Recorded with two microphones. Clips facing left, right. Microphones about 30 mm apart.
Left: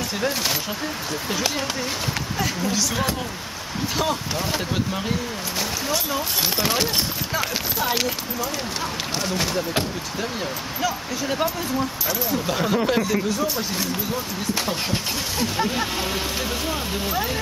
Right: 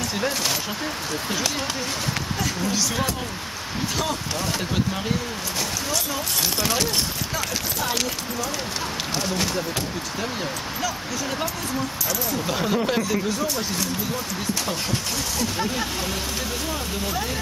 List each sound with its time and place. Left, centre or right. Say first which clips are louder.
0.2 s speech: left 1 dB; centre
2.4 s speech: left 1 dB; centre
10.8 s speech: left 4 dB; centre
12.4 s speech: left 1 dB; centre
15.5 s speech: left 2 dB; centre